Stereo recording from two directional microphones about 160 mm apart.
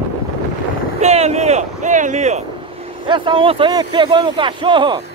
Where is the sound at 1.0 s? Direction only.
45° right (ahead or behind).